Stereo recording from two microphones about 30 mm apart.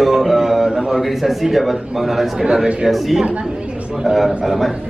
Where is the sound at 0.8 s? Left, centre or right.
Centre.